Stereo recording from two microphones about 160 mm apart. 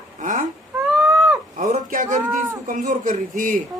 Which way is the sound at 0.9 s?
5° right (ahead or behind).